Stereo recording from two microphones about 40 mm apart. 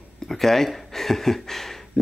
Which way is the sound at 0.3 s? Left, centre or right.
Centre.